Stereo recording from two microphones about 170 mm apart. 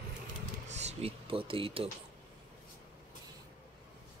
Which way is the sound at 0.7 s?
40° right (ahead or behind).